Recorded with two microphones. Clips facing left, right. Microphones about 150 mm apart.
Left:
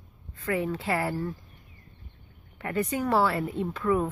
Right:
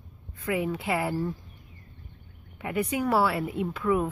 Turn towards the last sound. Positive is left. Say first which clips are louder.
# even
turn(degrees=-5)  # may be behind; listen again after turning